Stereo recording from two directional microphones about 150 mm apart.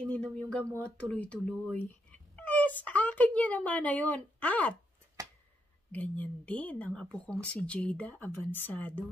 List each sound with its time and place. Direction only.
0.1 s speech: 5° left (ahead or behind)
5.2 s a sound: 25° right (ahead or behind)
5.9 s speech: 10° left (ahead or behind)